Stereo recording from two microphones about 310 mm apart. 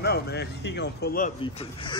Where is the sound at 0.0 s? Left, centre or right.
Left.